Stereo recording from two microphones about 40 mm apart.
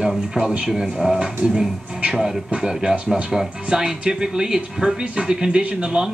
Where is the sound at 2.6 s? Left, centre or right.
Centre.